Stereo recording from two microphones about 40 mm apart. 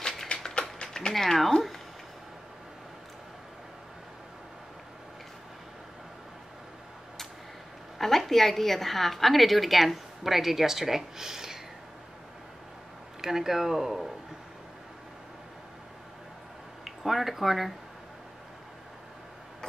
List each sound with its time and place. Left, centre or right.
0.0 s a sound: centre
1.1 s speech: centre
8.0 s a woman's voice: centre
13.2 s speech: centre
16.8 s speech: centre